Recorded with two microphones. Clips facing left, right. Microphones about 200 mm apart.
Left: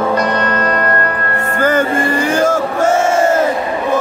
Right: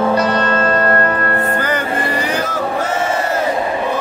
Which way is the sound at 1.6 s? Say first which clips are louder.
Left 5 dB; 45° left (ahead or behind).